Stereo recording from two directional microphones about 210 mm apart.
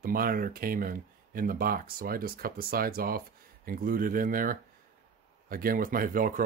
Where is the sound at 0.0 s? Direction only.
45° right (ahead or behind).